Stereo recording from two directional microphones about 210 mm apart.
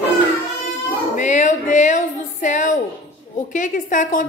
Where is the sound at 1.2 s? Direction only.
35° left (ahead or behind).